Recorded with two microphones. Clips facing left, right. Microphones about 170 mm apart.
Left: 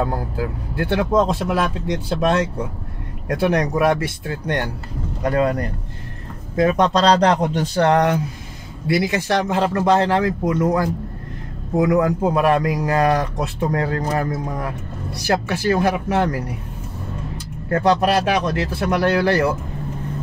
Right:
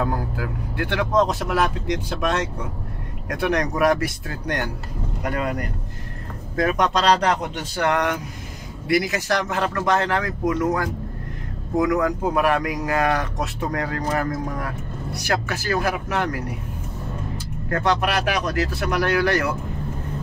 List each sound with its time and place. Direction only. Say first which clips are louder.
0.0 s a man's voice: left 2 dB; 25° left (ahead or behind)
17.6 s a man's voice: left 5 dB; 30° left (ahead or behind)